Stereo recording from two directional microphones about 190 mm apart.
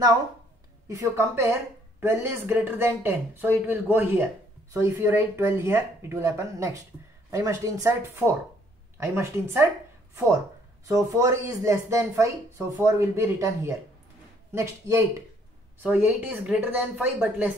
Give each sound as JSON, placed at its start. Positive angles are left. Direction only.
{"t": 0.8, "sound": "speech", "side_deg": -15}
{"t": 10.9, "sound": "speech", "side_deg": -15}